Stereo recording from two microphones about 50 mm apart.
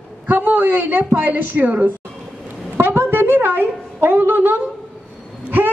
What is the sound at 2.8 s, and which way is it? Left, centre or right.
A woman's voice, right.